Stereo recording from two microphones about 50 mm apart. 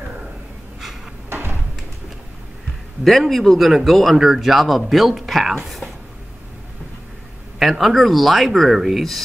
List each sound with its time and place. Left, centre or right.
1.3 s a sound: right
3.0 s speech: centre
7.5 s speech: centre